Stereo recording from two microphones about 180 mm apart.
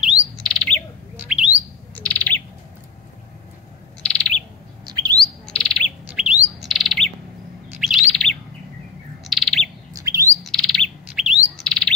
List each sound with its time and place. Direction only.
0.4 s bird: 5° left (ahead or behind)
1.1 s bird: 10° right (ahead or behind)
2.0 s bird: 5° left (ahead or behind)
4.0 s bird: 5° left (ahead or behind)
4.8 s bird: 20° right (ahead or behind)
5.1 s bird: 5° left (ahead or behind)
9.9 s bird: 20° right (ahead or behind)
10.4 s bird: centre (ahead or behind)